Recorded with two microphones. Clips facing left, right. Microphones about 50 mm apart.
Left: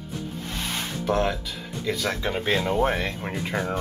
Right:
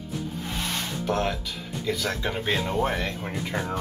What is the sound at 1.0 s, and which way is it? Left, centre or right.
Speech, centre.